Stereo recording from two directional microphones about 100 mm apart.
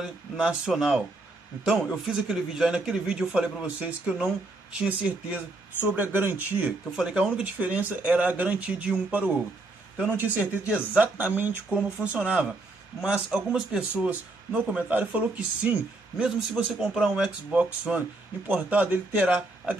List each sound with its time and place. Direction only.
0.0 s speech: 10° right (ahead or behind)
7.0 s speech: 10° right (ahead or behind)